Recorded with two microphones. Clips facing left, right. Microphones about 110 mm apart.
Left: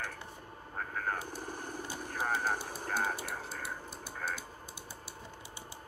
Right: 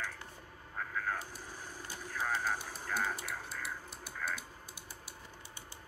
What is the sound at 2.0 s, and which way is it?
Vehicle, 55° left (ahead or behind).